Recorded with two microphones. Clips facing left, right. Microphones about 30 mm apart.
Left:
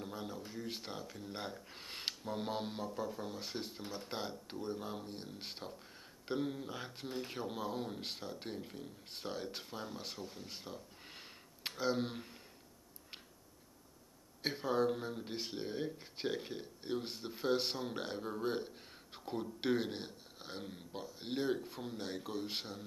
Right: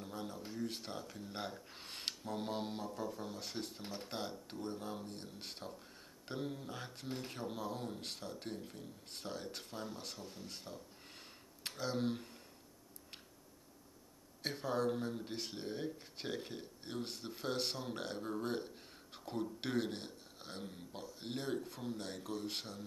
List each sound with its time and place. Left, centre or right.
0.0 s a sound: centre
0.5 s speech: centre
14.4 s speech: centre